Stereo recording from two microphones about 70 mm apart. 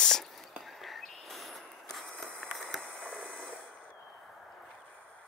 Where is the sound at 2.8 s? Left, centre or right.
Centre.